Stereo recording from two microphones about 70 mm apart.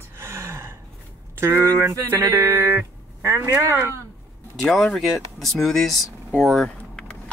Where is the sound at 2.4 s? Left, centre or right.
Right.